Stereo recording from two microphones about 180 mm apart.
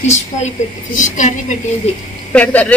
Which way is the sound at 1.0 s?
45° left (ahead or behind).